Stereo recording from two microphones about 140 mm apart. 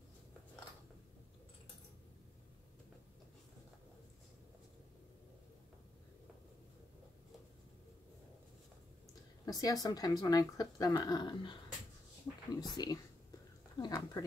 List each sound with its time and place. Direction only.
9.5 s speech: 25° left (ahead or behind)
12.5 s speech: 30° left (ahead or behind)
13.7 s a sound: 25° left (ahead or behind)